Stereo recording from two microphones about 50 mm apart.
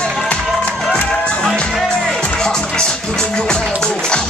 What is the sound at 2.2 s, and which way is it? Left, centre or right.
Speech, centre.